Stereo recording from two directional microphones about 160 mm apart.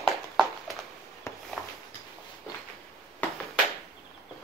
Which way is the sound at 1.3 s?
20° left (ahead or behind).